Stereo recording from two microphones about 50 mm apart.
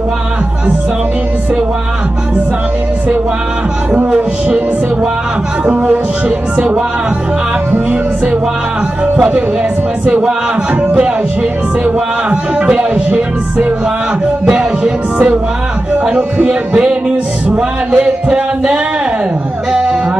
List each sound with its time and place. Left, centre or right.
3.9 s speech: right
5.7 s speech: right
10.0 s speech: right
11.8 s speech: right
17.5 s music: centre